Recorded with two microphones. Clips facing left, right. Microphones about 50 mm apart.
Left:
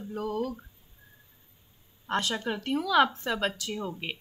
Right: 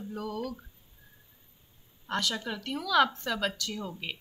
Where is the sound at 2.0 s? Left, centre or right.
Left.